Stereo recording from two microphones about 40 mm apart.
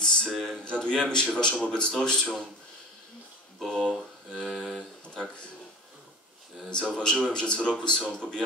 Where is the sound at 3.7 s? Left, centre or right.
Left.